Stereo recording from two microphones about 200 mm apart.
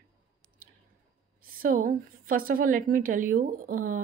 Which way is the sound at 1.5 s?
45° right (ahead or behind).